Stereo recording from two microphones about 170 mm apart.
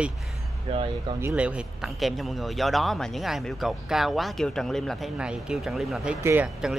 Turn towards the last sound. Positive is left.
turn(degrees=-15)  # may be behind; listen again after turning